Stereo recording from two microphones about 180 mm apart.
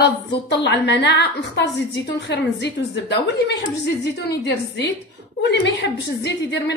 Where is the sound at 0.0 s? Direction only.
75° left (ahead or behind).